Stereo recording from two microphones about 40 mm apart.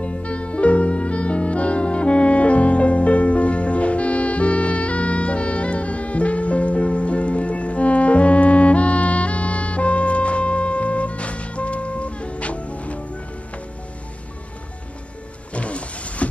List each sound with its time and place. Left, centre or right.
0.0 s music: left
15.5 s music: left